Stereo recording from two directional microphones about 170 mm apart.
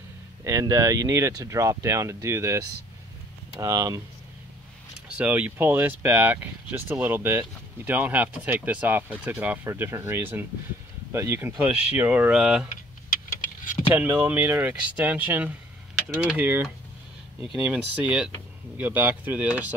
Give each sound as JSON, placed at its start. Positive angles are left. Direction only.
{"t": 0.4, "sound": "speech", "side_deg": -15}
{"t": 5.0, "sound": "speech", "side_deg": -10}
{"t": 13.8, "sound": "speech", "side_deg": -10}